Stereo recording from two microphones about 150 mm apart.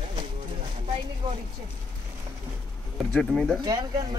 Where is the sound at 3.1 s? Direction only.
5° left (ahead or behind).